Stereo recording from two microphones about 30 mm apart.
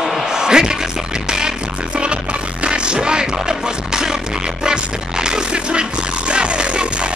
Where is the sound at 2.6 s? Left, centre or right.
Right.